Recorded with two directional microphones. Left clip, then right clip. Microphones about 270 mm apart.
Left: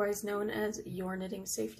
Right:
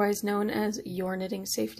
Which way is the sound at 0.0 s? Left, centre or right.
Right.